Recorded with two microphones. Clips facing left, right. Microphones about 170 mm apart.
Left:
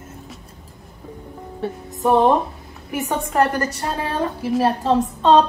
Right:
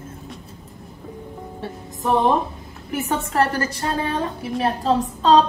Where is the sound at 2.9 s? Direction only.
15° left (ahead or behind).